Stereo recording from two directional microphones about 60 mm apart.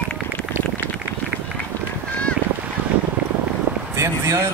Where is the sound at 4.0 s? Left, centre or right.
Right.